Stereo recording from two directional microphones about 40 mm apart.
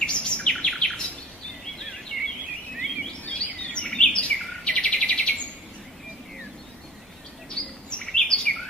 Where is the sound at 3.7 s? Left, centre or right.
Left.